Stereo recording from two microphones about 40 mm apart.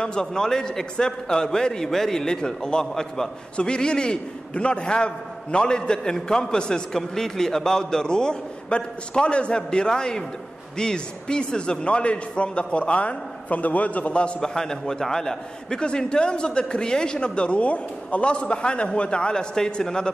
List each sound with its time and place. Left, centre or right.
0.0 s a man's voice: centre
3.5 s speech: left
14.4 s a man's voice: centre